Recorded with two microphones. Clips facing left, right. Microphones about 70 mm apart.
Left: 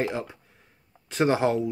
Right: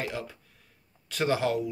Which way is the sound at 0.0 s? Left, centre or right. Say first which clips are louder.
Left 6 dB; left.